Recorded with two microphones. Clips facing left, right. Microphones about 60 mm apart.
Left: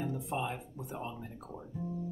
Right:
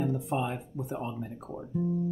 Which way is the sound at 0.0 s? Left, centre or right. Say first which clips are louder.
Right 5 dB; right.